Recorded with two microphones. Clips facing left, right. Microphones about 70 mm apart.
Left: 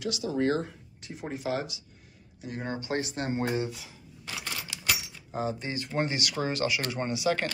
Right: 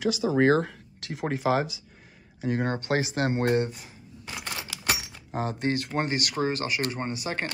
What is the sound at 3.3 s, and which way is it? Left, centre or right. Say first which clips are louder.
Speech: right 3 dB; right.